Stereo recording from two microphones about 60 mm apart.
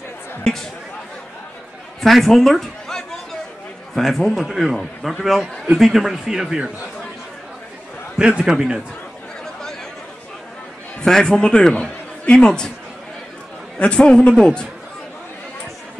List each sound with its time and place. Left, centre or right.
0.4 s a sound: centre
2.0 s a sound: centre
3.9 s a man's voice: centre
8.2 s a man's voice: centre
11.0 s a man's voice: centre
13.7 s a man's voice: centre